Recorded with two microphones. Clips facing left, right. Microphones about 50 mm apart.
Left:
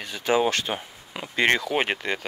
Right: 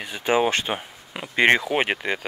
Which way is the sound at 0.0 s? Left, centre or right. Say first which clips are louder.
Right 1 dB; right.